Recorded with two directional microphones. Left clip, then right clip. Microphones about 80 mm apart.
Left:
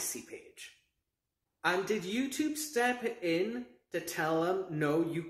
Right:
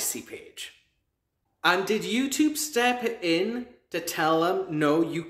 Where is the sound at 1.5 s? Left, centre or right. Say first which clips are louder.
Right 8 dB; right.